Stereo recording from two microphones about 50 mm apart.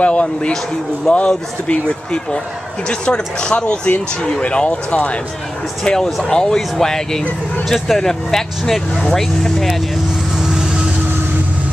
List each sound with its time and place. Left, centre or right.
0.0 s speech: left
6.0 s speech: centre
6.3 s speech: centre
10.4 s vehicle: centre